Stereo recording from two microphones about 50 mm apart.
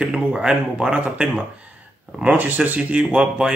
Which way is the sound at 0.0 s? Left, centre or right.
Centre.